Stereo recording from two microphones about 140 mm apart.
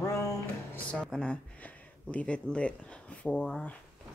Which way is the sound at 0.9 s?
5° left (ahead or behind).